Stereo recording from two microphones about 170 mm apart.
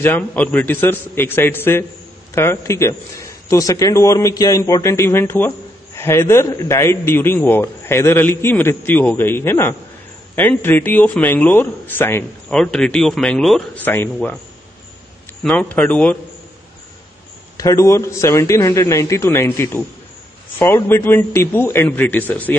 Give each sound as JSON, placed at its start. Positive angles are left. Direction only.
{"t": 0.0, "sound": "speech", "side_deg": 10}
{"t": 15.4, "sound": "speech", "side_deg": 10}
{"t": 17.6, "sound": "speech", "side_deg": 20}